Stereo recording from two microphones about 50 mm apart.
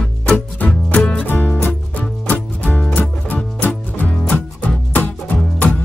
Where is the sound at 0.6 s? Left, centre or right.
Left.